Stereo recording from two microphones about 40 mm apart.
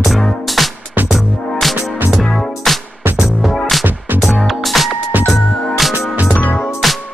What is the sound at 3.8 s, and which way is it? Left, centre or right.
Music, right.